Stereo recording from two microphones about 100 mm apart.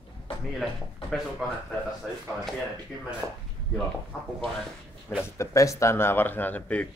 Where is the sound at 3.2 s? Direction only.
5° left (ahead or behind).